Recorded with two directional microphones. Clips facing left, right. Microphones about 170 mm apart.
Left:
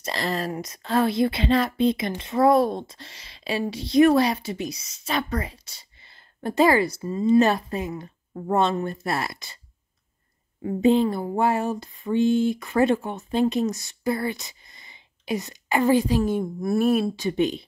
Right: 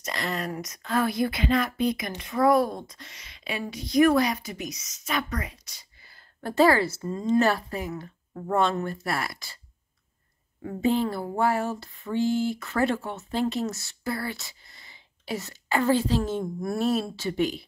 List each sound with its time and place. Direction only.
0.0 s speech: 30° left (ahead or behind); by 7.3 s 10° left (ahead or behind)
7.3 s speech: 20° left (ahead or behind)
10.6 s a sound: 20° left (ahead or behind)